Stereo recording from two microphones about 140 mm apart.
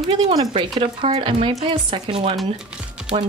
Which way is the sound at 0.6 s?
40° right (ahead or behind).